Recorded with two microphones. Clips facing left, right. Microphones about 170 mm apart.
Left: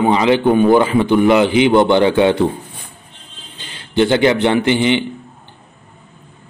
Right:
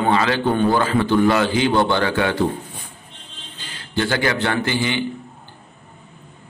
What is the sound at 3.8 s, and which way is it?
A man's voice, 20° left (ahead or behind).